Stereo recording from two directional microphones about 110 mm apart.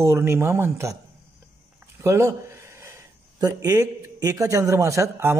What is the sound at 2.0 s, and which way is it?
Speech, 25° right (ahead or behind).